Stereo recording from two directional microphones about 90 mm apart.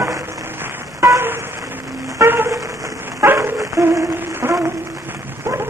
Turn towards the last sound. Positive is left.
turn(degrees=-30)  # may be behind; listen again after turning